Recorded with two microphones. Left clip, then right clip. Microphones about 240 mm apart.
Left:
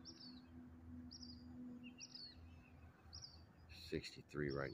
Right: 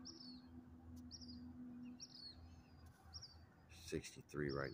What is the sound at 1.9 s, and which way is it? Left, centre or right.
Bird, right.